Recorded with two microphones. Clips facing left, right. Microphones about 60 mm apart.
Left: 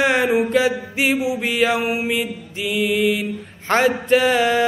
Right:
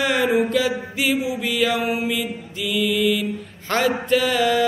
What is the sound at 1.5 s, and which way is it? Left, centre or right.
Mantra, left.